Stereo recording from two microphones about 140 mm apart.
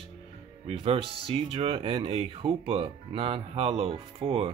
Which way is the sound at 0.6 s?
45° right (ahead or behind).